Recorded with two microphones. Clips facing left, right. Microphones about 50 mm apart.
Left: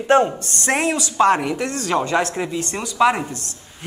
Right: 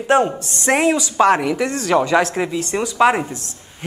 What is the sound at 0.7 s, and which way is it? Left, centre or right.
A woman's voice, centre.